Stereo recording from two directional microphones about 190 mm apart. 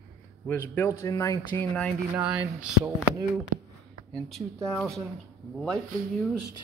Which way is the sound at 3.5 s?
45° right (ahead or behind).